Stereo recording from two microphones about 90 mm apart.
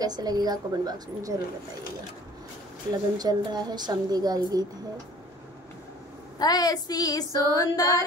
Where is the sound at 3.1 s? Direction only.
50° right (ahead or behind).